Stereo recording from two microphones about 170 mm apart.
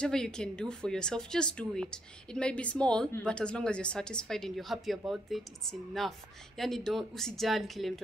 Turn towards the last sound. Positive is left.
turn(degrees=0)  # may be behind; listen again after turning